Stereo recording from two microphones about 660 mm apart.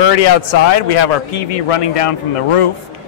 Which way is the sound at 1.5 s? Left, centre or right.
Left.